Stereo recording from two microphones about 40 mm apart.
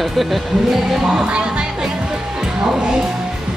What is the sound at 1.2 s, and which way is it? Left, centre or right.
Music, right.